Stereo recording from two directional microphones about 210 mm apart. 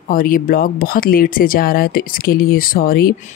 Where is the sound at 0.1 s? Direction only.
40° left (ahead or behind).